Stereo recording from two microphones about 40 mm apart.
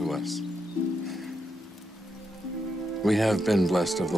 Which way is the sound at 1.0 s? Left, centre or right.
Centre.